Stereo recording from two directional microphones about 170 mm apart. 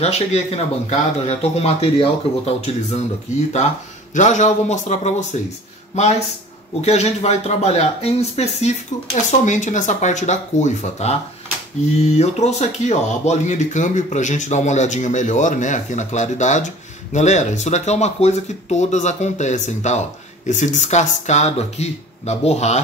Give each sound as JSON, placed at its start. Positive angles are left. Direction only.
{"t": 0.0, "sound": "speech", "side_deg": 40}
{"t": 4.1, "sound": "speech", "side_deg": 45}